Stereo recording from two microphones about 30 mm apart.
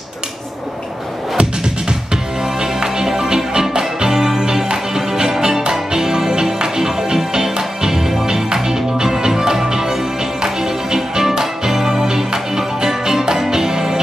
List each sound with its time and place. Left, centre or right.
2.4 s music: centre